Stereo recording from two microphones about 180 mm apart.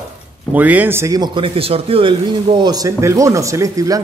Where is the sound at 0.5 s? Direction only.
10° right (ahead or behind).